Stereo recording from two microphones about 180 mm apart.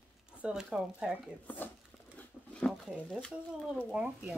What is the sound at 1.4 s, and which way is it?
Speech, 10° left (ahead or behind).